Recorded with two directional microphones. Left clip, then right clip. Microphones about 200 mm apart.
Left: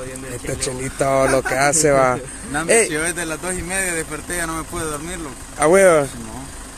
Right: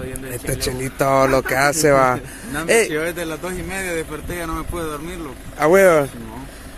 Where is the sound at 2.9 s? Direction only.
30° left (ahead or behind).